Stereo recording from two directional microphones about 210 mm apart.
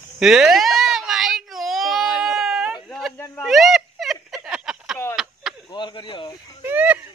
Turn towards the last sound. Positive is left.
turn(degrees=-10)  # may be behind; listen again after turning